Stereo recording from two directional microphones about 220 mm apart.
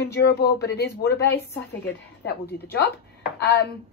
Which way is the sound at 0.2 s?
45° left (ahead or behind).